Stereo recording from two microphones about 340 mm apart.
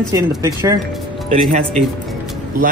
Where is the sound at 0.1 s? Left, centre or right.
Centre.